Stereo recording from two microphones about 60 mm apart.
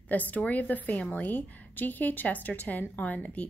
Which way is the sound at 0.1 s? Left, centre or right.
Left.